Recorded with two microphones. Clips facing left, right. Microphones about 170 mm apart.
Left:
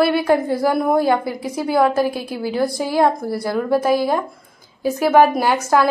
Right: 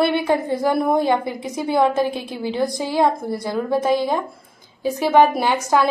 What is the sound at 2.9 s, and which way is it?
Speech, 15° right (ahead or behind).